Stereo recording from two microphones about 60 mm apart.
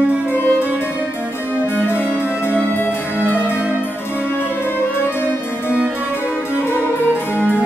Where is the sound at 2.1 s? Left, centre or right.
Right.